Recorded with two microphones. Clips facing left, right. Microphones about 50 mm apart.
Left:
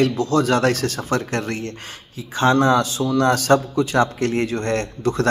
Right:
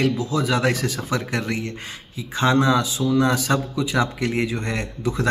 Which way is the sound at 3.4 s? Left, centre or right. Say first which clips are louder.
Left 6 dB; left.